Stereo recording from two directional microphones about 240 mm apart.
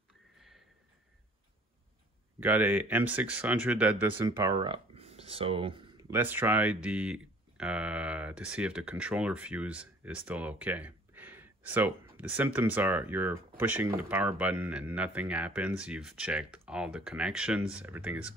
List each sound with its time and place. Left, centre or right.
2.4 s speech: centre
6.1 s speech: centre